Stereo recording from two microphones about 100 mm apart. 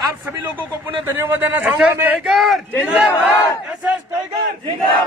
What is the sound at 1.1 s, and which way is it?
A man's voice, 25° right (ahead or behind).